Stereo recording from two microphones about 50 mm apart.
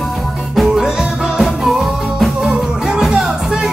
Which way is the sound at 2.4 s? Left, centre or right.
Centre.